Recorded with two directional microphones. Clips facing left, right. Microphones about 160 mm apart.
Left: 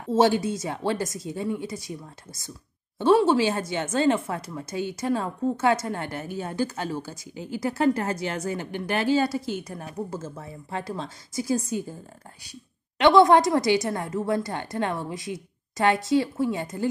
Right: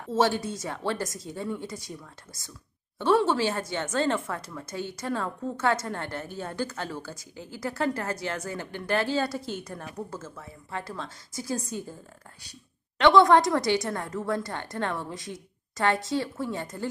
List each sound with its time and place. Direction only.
0.2 s speech: 10° left (ahead or behind)
3.0 s speech: 15° left (ahead or behind)
10.1 s speech: 35° left (ahead or behind)
10.7 s speech: 20° left (ahead or behind)
13.2 s speech: 10° left (ahead or behind)